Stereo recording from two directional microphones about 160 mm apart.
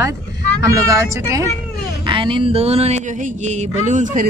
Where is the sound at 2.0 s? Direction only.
30° right (ahead or behind); by 4.2 s 50° right (ahead or behind).